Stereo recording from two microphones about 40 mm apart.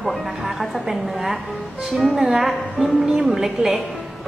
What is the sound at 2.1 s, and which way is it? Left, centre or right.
Speech, centre.